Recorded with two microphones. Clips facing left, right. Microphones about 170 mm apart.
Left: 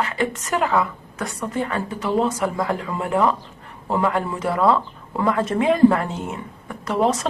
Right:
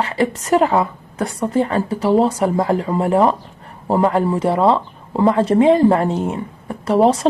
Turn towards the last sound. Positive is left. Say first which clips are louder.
# right 6 dB
turn(degrees=-30)  # may be behind; listen again after turning